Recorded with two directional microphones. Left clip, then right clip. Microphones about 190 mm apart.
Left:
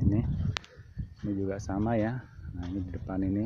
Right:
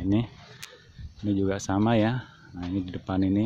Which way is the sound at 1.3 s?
5° right (ahead or behind).